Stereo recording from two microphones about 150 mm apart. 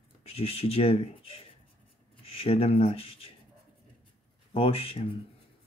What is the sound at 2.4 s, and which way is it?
Speech, 40° left (ahead or behind).